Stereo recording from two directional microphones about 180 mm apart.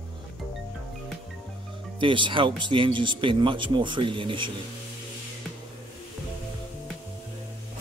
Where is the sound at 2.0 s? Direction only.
25° right (ahead or behind).